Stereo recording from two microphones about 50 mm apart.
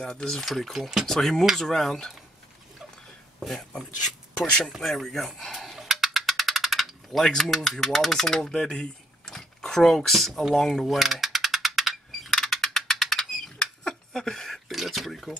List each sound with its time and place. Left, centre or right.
0.0 s speech: centre
3.3 s speech: centre
4.5 s speech: centre
4.7 s music: centre
7.2 s speech: centre
10.5 s mechanisms: centre
12.4 s a sound: centre
13.6 s speech: centre